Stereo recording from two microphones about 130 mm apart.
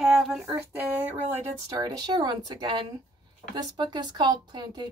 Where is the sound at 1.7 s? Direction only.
30° right (ahead or behind).